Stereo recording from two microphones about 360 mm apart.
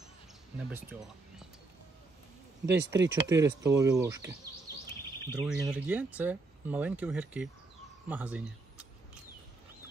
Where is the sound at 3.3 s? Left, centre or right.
Centre.